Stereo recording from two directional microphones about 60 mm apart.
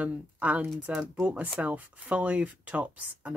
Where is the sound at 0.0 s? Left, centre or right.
Right.